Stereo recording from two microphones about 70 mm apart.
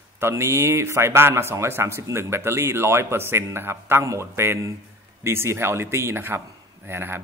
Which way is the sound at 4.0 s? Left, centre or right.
Right.